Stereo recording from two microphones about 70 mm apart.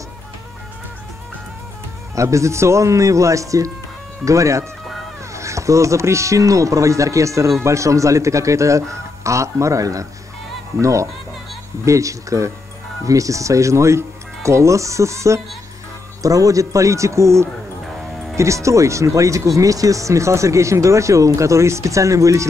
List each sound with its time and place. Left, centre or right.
2.1 s speech: right